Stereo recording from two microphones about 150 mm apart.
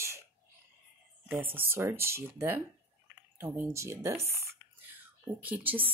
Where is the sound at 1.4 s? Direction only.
15° right (ahead or behind).